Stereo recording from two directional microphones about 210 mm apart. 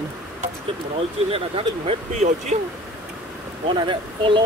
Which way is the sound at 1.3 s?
25° right (ahead or behind).